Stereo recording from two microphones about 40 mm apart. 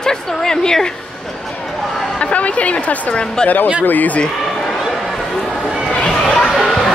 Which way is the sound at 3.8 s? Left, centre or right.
Left.